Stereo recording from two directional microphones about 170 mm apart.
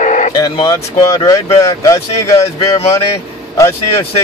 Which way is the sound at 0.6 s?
20° left (ahead or behind).